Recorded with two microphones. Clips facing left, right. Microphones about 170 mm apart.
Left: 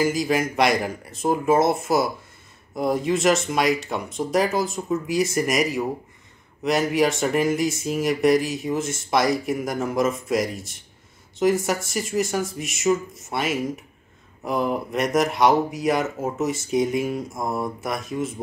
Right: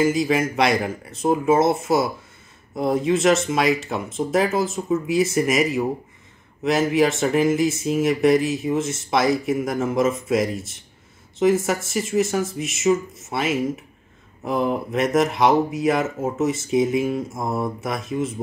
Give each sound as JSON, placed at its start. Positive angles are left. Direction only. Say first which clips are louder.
{"t": 0.0, "sound": "speech", "louder": "right 2 dB", "side_deg": 0}